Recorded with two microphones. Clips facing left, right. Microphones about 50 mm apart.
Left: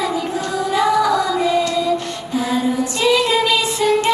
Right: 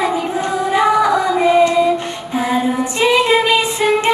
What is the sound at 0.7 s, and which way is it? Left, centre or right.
Female singing, right.